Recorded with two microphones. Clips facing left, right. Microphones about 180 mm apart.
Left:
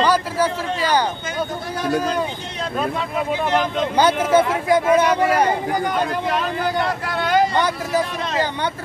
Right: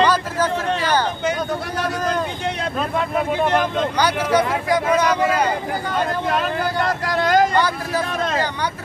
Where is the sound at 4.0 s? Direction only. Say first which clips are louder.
Left 4 dB; 25° left (ahead or behind).